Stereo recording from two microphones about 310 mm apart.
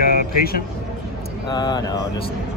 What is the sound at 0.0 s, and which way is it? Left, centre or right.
Vehicle, left.